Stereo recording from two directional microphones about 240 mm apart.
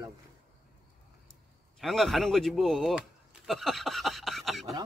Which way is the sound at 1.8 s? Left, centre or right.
Centre.